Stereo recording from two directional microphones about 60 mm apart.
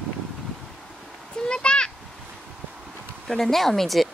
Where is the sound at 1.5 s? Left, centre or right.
Centre.